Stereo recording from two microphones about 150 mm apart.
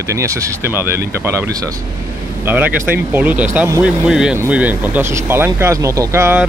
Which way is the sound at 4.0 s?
5° right (ahead or behind).